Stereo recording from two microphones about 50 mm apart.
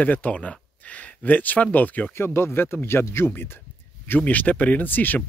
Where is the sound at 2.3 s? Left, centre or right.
Left.